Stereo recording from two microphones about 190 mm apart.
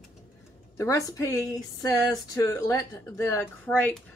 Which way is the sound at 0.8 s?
15° left (ahead or behind).